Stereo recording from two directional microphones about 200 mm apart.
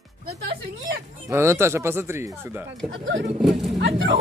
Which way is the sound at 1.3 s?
15° right (ahead or behind).